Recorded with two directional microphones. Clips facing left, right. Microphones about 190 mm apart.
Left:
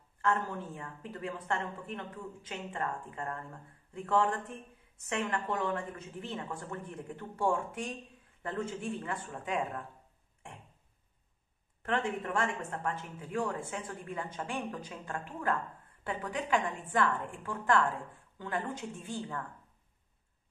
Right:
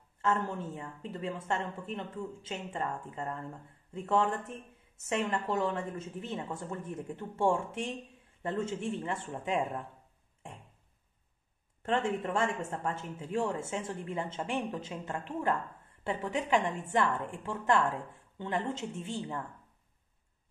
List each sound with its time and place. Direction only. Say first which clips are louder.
0.2 s speech: right 1 dB; 25° right (ahead or behind)
11.8 s speech: right 2 dB; 25° right (ahead or behind)